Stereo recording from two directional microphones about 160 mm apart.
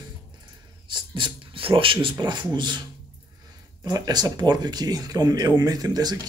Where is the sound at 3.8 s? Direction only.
25° right (ahead or behind).